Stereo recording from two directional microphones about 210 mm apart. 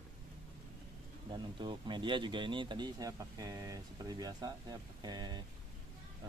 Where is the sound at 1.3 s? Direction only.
20° right (ahead or behind).